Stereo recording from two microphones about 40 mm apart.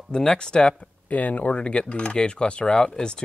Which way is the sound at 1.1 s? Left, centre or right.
Left.